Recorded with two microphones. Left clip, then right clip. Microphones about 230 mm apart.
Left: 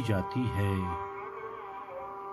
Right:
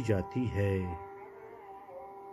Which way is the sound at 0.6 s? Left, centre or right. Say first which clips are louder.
Right 5 dB; centre.